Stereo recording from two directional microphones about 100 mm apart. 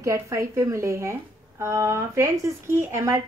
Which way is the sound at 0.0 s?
30° right (ahead or behind).